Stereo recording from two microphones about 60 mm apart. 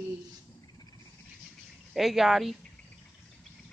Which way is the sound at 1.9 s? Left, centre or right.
Centre.